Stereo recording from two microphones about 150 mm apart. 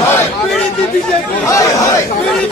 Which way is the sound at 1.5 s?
20° left (ahead or behind).